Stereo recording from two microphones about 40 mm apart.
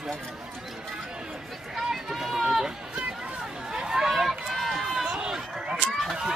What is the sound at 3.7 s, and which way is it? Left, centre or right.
Chatter, centre.